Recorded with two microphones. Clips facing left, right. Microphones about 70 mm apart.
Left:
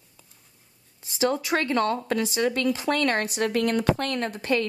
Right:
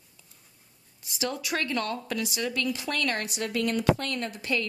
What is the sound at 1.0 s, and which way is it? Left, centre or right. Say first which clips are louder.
Speech: left 8 dB; left.